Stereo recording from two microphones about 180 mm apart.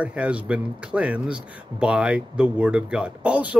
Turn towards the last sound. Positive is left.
turn(degrees=-5)  # may be behind; listen again after turning